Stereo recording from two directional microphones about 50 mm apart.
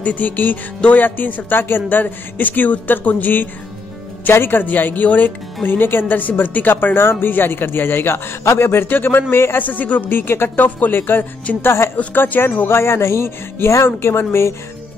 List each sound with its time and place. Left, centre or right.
0.0 s speech: left
4.3 s speech: left
8.8 s speech: left
9.6 s speech: left
11.6 s speech: left
12.1 s speech: left
12.6 s speech: left
13.8 s speech: left